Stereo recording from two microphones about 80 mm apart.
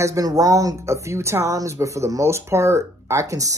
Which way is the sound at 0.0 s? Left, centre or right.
Right.